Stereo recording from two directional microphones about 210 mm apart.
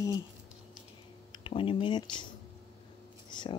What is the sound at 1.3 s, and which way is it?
Speech, 25° left (ahead or behind).